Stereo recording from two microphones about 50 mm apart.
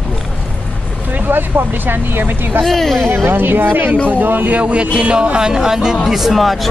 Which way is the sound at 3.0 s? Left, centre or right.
Right.